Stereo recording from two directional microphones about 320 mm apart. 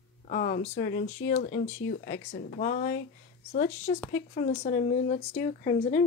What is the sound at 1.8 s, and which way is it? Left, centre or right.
Speech, left.